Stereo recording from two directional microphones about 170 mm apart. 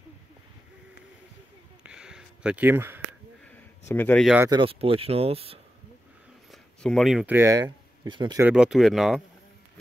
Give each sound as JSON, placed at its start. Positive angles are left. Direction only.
{"t": 1.8, "sound": "a sound", "side_deg": -5}
{"t": 3.9, "sound": "speech", "side_deg": 10}
{"t": 4.5, "sound": "speech", "side_deg": -30}
{"t": 6.5, "sound": "speech", "side_deg": 0}
{"t": 8.4, "sound": "speech", "side_deg": -5}